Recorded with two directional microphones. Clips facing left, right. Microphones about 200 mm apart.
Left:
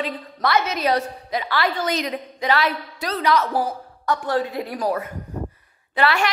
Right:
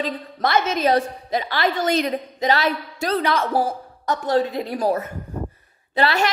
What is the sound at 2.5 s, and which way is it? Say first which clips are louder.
Speech: left 1 dB; 45° right (ahead or behind).